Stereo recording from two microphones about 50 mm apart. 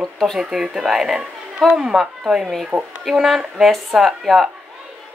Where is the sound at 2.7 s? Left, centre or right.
Right.